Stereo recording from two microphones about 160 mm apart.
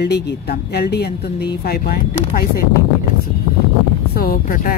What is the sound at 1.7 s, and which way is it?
Speech, 70° left (ahead or behind).